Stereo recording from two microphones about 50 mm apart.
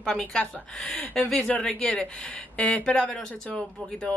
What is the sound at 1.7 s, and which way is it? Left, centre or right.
Speech, left.